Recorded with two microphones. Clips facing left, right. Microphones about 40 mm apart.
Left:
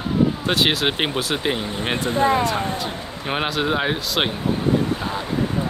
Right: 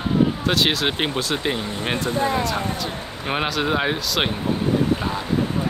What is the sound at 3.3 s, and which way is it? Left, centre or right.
Speech, centre.